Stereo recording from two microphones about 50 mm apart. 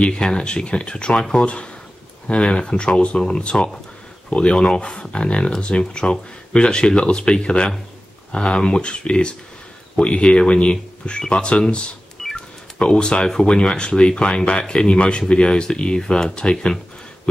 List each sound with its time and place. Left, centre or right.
0.0 s speech: centre